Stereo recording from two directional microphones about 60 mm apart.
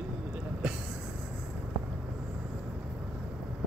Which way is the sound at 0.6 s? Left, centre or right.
Centre.